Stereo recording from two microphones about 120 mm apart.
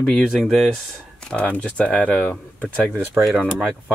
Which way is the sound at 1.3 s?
10° left (ahead or behind).